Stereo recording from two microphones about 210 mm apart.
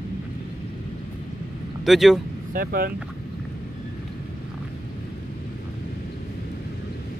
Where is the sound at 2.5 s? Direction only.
45° right (ahead or behind).